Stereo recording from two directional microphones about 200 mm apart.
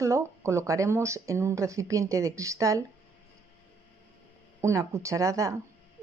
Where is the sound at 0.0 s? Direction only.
15° right (ahead or behind).